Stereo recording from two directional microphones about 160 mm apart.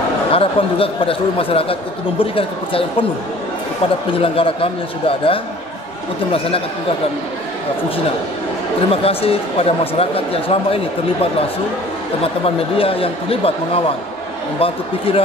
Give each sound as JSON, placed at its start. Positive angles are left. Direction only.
{"t": 0.3, "sound": "speech", "side_deg": 35}
{"t": 4.2, "sound": "speech", "side_deg": 35}
{"t": 8.9, "sound": "speech", "side_deg": 35}
{"t": 12.2, "sound": "speech", "side_deg": 35}